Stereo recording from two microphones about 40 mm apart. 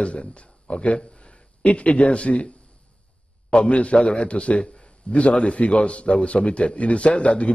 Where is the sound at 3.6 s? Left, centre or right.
Left.